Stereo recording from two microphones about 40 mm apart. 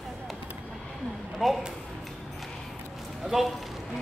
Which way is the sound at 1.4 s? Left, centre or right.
Centre.